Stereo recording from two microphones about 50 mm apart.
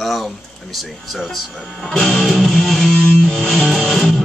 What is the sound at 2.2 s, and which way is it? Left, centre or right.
Music, centre.